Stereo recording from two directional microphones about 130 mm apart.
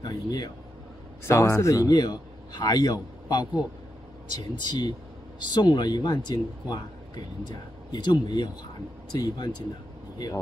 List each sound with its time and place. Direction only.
0.0 s a man's voice: 30° left (ahead or behind)